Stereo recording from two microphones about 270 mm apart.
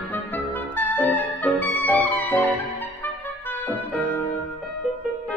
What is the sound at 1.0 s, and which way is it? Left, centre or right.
Music, centre.